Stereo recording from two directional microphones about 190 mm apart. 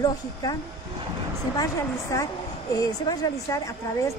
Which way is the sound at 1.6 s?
15° left (ahead or behind).